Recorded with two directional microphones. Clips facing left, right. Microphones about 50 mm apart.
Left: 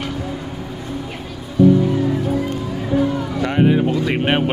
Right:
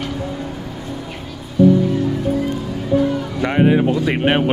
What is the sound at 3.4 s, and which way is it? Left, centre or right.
Speech, centre.